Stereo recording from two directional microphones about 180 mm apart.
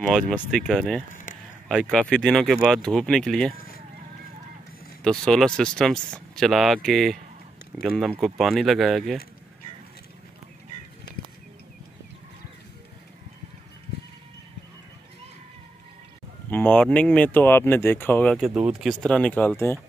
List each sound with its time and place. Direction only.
0.0 s speech: 5° left (ahead or behind)
1.1 s a sound: 45° left (ahead or behind)
1.7 s speech: centre (ahead or behind)
5.0 s speech: 5° left (ahead or behind)
11.1 s a sound: 65° left (ahead or behind)
16.4 s speech: 10° left (ahead or behind)